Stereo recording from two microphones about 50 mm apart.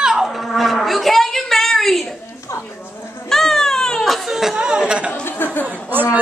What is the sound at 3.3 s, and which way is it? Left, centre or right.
Baby cry, centre.